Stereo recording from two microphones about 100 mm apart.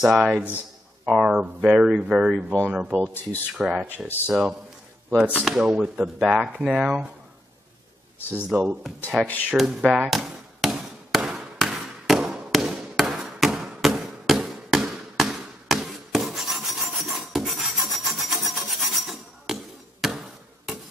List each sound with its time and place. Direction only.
0.0 s speech: 5° right (ahead or behind)
9.1 s speech: centre (ahead or behind)
9.5 s hammer: 5° right (ahead or behind)